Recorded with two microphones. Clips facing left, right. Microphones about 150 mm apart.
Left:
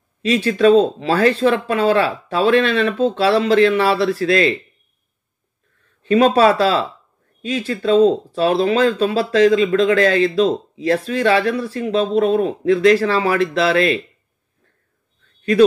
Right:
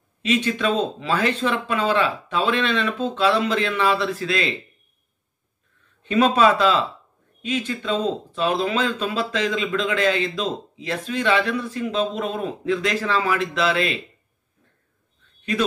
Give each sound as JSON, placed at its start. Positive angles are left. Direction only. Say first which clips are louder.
{"t": 0.2, "sound": "speech", "louder": "left 7 dB", "side_deg": 35}
{"t": 6.0, "sound": "speech", "louder": "left 4 dB", "side_deg": 40}